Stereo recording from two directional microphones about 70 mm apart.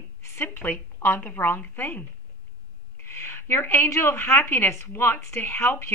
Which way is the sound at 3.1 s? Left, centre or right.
Left.